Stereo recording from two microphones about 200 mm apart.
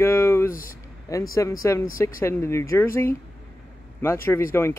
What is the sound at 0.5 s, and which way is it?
Speech, 45° left (ahead or behind).